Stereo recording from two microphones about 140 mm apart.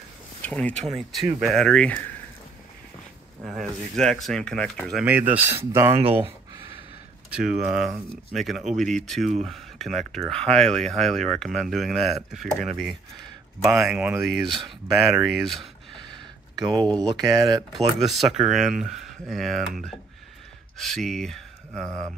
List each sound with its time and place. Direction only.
0.4 s speech: 10° left (ahead or behind)
3.4 s speech: centre (ahead or behind)
5.0 s speech: 10° right (ahead or behind)
7.2 s speech: 5° right (ahead or behind)
13.7 s speech: 5° right (ahead or behind)
15.3 s a sound: centre (ahead or behind)
16.5 s speech: 30° right (ahead or behind)
17.7 s speech: centre (ahead or behind)